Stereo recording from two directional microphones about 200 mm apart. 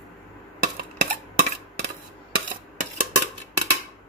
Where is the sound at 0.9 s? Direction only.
45° right (ahead or behind).